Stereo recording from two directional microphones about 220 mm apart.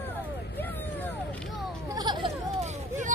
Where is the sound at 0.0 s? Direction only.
10° left (ahead or behind).